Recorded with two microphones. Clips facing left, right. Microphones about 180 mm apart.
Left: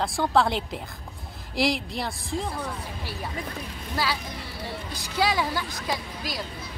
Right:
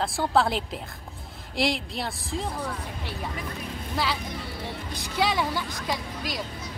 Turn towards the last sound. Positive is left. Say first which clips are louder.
# right 1 dB
turn(degrees=0)  # may be behind; listen again after turning